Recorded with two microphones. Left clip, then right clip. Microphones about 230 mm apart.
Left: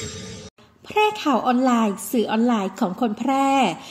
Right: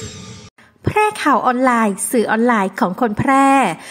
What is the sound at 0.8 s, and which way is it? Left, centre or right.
A woman's voice, right.